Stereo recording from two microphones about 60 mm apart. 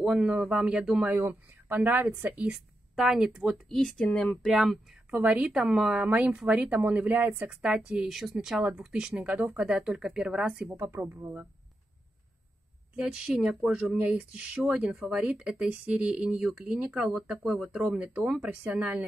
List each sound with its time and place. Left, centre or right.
0.2 s speech: centre
1.0 s speech: right
2.5 s a woman's voice: centre
4.0 s speech: left
4.5 s speech: centre
5.1 s speech: right
6.0 s speech: right
7.6 s speech: centre
9.6 s speech: centre
11.0 s speech: right
12.9 s speech: centre
17.0 s speech: centre